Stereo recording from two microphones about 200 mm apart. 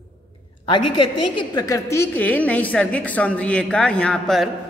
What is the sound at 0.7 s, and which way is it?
A woman's voice, 25° left (ahead or behind).